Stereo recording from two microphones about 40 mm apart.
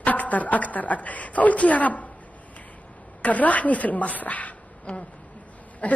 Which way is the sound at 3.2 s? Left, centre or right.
Left.